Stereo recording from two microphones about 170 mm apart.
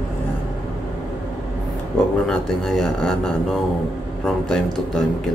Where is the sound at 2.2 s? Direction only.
5° left (ahead or behind).